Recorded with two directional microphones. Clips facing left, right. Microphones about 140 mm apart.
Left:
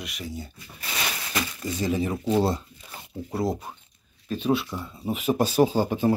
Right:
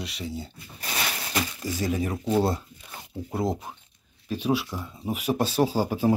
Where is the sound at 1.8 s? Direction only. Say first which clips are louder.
Left 2 dB; centre (ahead or behind).